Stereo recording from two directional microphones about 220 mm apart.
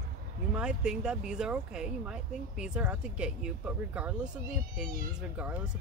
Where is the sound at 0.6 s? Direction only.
5° right (ahead or behind).